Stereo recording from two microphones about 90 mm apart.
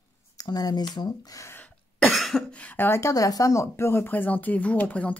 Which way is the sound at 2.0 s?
Centre (ahead or behind).